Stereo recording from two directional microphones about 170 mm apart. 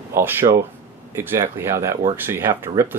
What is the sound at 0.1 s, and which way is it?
Speech, 15° right (ahead or behind).